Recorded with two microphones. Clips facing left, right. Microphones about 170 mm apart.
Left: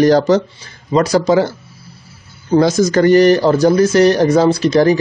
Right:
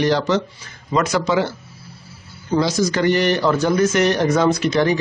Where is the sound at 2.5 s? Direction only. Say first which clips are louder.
Left 7 dB; 50° left (ahead or behind).